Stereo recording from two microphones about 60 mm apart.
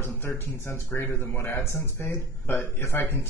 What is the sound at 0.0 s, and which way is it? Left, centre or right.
Speech, left.